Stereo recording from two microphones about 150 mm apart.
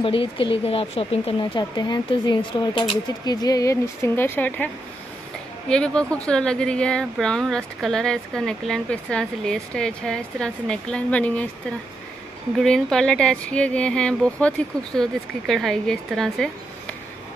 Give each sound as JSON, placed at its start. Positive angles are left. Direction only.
{"t": 0.0, "sound": "speech", "side_deg": 35}
{"t": 5.7, "sound": "speech", "side_deg": 5}
{"t": 12.5, "sound": "speech", "side_deg": 5}